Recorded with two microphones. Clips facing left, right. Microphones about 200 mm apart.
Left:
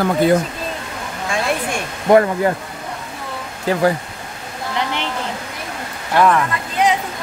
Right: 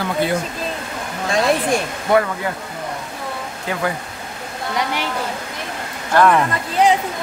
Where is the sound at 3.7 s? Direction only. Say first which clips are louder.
Left 7 dB; 35° left (ahead or behind).